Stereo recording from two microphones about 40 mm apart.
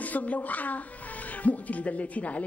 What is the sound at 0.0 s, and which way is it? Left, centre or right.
A woman's voice, left.